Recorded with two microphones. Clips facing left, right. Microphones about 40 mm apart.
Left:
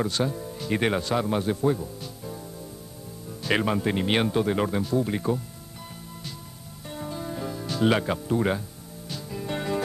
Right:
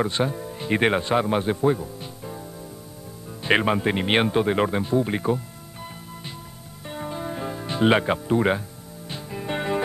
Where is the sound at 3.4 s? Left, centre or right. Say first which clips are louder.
Right 4 dB; right.